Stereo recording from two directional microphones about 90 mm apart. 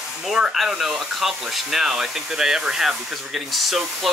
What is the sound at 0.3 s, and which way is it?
Speech, 5° right (ahead or behind).